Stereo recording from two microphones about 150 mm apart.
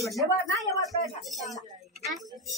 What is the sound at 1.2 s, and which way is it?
Speech, centre (ahead or behind).